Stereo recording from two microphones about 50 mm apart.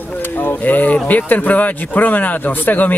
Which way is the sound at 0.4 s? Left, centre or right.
Left.